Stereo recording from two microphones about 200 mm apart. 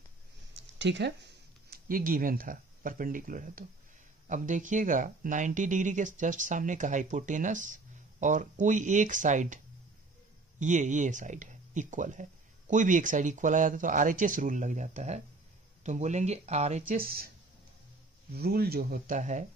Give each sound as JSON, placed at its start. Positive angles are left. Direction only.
{"t": 0.6, "sound": "a sound", "side_deg": -60}
{"t": 1.7, "sound": "speech", "side_deg": -45}
{"t": 10.6, "sound": "speech", "side_deg": -40}
{"t": 18.3, "sound": "speech", "side_deg": -50}